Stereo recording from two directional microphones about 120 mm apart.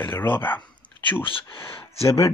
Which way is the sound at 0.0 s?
20° left (ahead or behind).